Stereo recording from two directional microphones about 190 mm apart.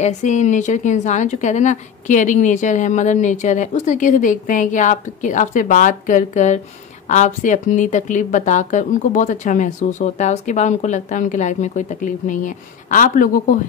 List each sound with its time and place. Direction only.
0.0 s a woman's voice: 40° left (ahead or behind)